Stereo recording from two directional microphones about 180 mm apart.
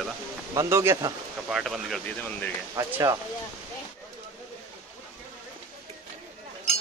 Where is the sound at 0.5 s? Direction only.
15° right (ahead or behind).